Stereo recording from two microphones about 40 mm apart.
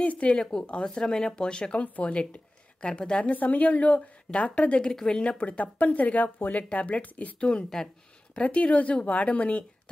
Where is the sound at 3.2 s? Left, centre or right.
Left.